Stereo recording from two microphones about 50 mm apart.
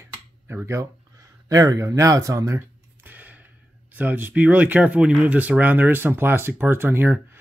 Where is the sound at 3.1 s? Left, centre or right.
Right.